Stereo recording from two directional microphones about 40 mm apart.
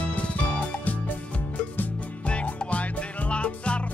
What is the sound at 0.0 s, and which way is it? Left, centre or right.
Music, left.